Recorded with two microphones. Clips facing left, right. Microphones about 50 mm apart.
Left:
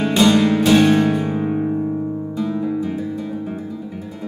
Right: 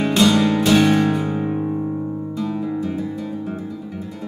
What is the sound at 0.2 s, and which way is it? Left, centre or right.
Music, centre.